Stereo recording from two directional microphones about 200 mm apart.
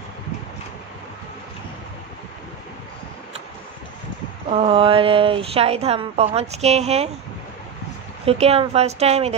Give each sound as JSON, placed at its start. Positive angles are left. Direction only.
{"t": 4.5, "sound": "a woman's voice", "side_deg": -30}
{"t": 8.3, "sound": "a woman's voice", "side_deg": -30}